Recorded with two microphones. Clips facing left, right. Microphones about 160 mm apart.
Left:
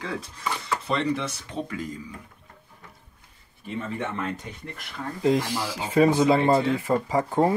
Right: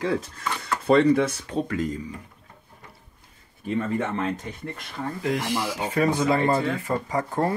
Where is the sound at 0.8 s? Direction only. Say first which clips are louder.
Right 10 dB; 50° right (ahead or behind).